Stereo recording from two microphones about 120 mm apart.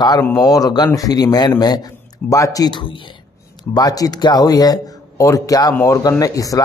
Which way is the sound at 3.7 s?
30° left (ahead or behind).